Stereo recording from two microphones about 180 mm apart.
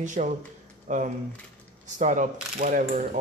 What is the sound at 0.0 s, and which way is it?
Speech, 45° right (ahead or behind).